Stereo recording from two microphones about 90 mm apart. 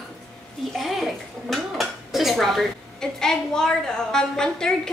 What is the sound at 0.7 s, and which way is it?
Speech, centre (ahead or behind).